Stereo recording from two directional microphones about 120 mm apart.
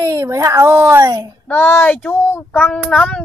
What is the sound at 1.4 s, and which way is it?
Child singing, 15° left (ahead or behind).